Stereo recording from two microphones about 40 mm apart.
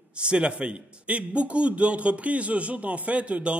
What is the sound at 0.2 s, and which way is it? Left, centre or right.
A man's voice, right.